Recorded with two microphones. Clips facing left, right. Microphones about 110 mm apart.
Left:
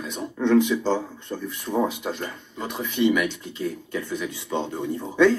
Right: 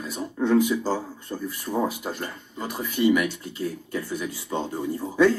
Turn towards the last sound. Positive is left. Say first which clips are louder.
# left 1 dB
turn(degrees=-5)  # may be behind; listen again after turning